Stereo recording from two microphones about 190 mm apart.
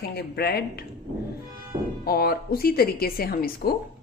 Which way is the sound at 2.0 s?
55° left (ahead or behind).